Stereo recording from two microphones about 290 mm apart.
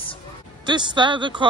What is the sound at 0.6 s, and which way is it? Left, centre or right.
Speech, centre.